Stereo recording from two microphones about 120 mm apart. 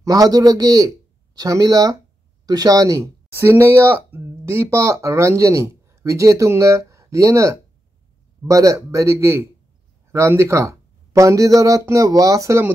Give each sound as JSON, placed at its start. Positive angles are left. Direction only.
{"t": 0.0, "sound": "a man's voice", "side_deg": -30}